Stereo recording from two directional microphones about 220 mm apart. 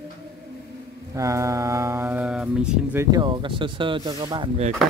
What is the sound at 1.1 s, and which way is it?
Mantra, 15° right (ahead or behind).